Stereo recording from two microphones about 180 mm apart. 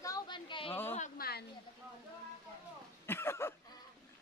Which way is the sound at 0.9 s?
50° left (ahead or behind).